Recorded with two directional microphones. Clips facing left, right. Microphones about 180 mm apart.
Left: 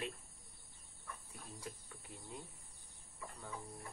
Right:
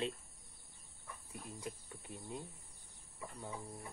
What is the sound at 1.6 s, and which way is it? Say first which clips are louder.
Speech: right 4 dB; 20° right (ahead or behind).